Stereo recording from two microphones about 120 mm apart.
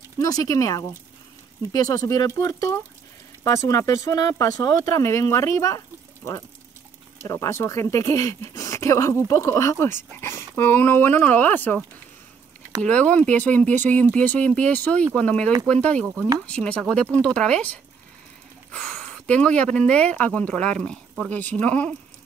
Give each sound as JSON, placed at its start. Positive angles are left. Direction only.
{"t": 0.2, "sound": "speech", "side_deg": 30}
{"t": 7.2, "sound": "speech", "side_deg": 25}
{"t": 12.8, "sound": "speech", "side_deg": 10}